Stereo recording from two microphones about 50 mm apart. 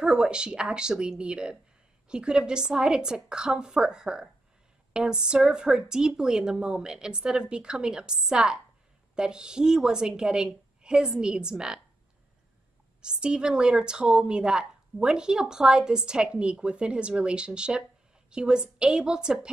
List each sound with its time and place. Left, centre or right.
0.0 s speech: centre
13.0 s speech: centre